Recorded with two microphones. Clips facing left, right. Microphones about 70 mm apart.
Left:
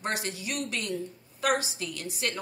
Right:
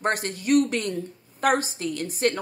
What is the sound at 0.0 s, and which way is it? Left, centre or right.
Speech, right.